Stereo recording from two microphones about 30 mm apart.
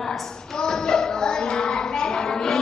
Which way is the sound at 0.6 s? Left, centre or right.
Left.